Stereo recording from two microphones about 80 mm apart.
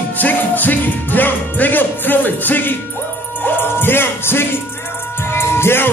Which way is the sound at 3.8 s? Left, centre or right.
Left.